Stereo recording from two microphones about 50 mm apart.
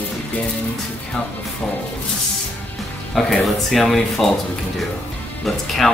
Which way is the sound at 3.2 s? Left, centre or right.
Centre.